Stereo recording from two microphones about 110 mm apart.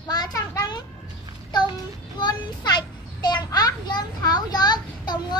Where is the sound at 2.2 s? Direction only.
40° left (ahead or behind).